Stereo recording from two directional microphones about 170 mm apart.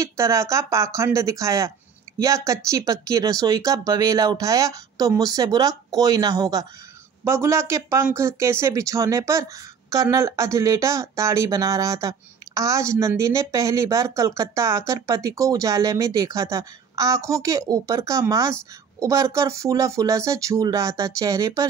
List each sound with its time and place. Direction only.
0.0 s speech: 15° right (ahead or behind)